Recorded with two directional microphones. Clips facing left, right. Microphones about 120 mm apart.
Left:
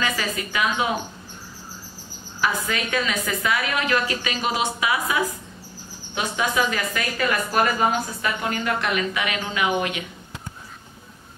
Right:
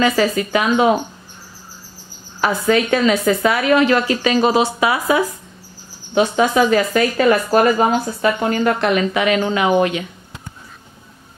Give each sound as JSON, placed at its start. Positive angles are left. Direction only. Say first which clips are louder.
{"t": 0.0, "sound": "a woman's voice", "louder": "right 10 dB", "side_deg": -35}
{"t": 2.7, "sound": "a woman's voice", "louder": "right 11 dB", "side_deg": -30}
{"t": 6.1, "sound": "a woman's voice", "louder": "right 9 dB", "side_deg": -30}